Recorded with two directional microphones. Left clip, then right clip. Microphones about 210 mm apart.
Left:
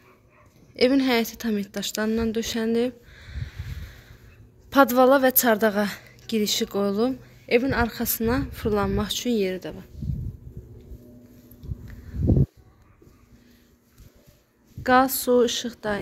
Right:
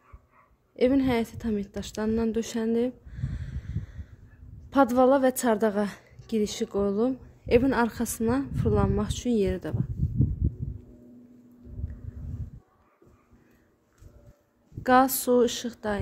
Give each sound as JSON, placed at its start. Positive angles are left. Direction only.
{"t": 0.7, "sound": "a woman's voice", "side_deg": -5}
{"t": 7.4, "sound": "a woman's voice", "side_deg": -20}
{"t": 14.8, "sound": "a woman's voice", "side_deg": -15}